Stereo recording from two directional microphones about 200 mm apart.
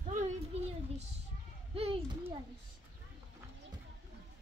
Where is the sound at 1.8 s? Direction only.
30° right (ahead or behind).